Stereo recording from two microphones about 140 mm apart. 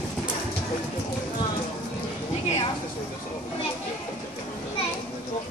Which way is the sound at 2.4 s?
45° left (ahead or behind).